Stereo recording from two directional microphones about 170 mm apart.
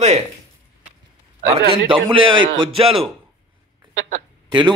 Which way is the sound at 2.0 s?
30° right (ahead or behind).